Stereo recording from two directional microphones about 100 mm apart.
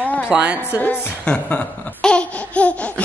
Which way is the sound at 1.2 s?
10° left (ahead or behind).